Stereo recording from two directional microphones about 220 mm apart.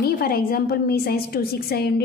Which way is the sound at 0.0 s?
45° left (ahead or behind).